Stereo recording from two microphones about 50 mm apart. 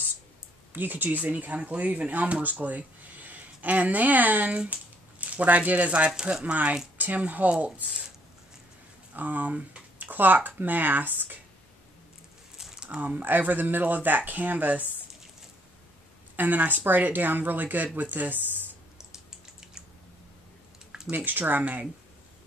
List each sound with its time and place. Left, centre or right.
0.7 s speech: right
9.1 s speech: right
12.5 s a sound: centre
13.0 s speech: right
16.3 s speech: right
18.9 s typing: centre
21.1 s speech: right